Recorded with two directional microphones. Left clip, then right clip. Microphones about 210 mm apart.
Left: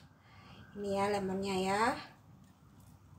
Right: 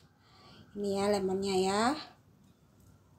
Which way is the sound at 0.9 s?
35° right (ahead or behind).